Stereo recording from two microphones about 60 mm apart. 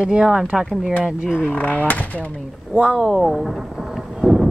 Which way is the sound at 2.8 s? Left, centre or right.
Centre.